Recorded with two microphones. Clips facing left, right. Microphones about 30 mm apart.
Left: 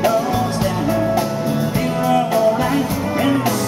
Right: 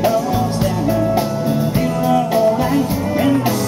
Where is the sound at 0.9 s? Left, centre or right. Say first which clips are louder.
Right 1 dB; centre.